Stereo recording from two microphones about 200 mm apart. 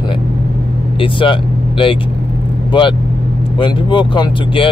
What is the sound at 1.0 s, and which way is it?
Speech, 25° left (ahead or behind).